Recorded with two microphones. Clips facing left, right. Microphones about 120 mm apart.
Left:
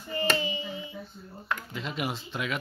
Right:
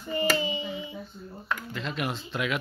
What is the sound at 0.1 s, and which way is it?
Hands, 30° right (ahead or behind).